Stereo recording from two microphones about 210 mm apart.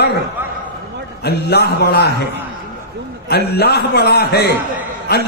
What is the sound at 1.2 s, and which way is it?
Speech, 50° left (ahead or behind).